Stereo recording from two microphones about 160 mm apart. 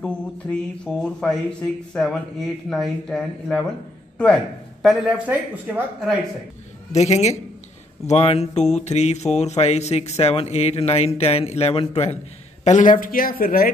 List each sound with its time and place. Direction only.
0.0 s speech: 5° left (ahead or behind)
4.8 s speech: 5° right (ahead or behind)
6.9 s speech: 45° left (ahead or behind)
12.6 s speech: 50° left (ahead or behind)